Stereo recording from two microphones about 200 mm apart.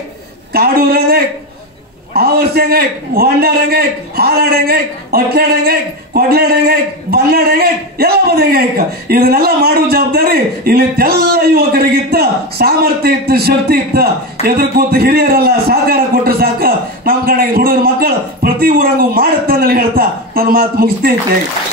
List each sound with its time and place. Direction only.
0.5 s a man's voice: 50° right (ahead or behind)